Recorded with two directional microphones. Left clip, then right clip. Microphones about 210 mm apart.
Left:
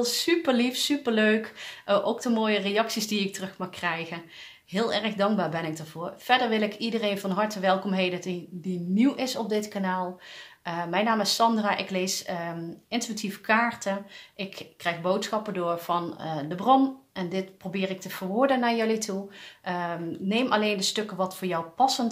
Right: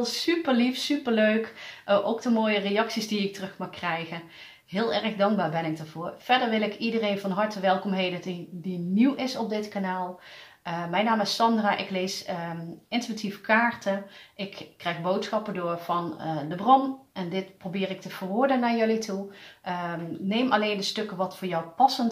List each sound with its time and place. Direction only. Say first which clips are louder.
0.0 s speech: left 2 dB; 40° left (ahead or behind)